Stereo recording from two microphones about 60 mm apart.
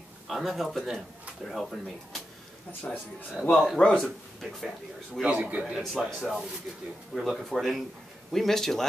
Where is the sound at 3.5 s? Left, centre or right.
Centre.